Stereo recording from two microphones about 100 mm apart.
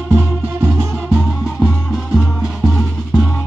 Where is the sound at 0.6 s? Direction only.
30° right (ahead or behind).